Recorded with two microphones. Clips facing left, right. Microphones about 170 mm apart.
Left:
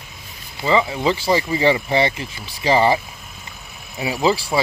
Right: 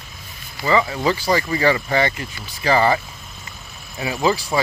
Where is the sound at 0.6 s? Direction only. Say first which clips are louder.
Even; 20° left (ahead or behind).